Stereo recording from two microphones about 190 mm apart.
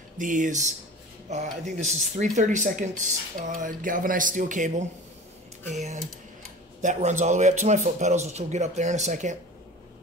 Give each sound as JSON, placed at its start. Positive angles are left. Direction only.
{"t": 0.2, "sound": "speech", "side_deg": -45}